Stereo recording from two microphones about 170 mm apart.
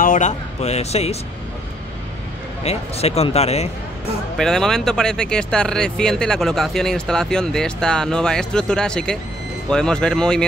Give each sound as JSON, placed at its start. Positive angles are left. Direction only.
{"t": 0.0, "sound": "speech", "side_deg": 45}
{"t": 2.6, "sound": "speech", "side_deg": 40}
{"t": 4.4, "sound": "speech", "side_deg": 5}